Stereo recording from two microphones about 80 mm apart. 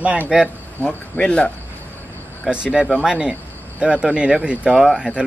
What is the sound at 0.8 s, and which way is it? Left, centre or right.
Speech, centre.